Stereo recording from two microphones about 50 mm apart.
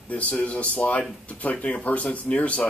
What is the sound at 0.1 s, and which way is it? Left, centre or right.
Speech, left.